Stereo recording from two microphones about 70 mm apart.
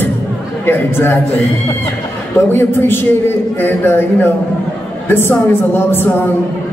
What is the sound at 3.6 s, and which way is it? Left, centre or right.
Speech, left.